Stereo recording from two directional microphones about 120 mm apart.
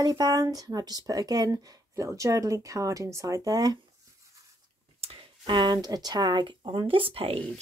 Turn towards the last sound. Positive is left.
turn(degrees=-50)  # may be behind; listen again after turning